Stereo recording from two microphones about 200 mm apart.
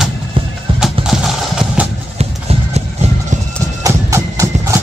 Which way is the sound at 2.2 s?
30° right (ahead or behind).